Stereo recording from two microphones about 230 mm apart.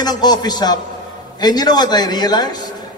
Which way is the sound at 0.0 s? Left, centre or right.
Centre.